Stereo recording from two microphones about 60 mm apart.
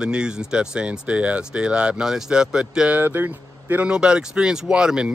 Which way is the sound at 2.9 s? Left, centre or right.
Right.